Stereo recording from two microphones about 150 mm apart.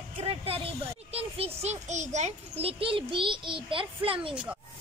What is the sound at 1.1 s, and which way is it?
A child's voice, 45° right (ahead or behind).